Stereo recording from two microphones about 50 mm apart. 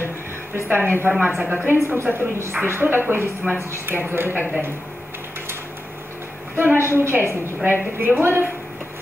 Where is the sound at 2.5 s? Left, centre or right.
Right.